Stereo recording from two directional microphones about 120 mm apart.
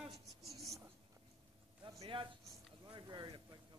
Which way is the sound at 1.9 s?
45° right (ahead or behind).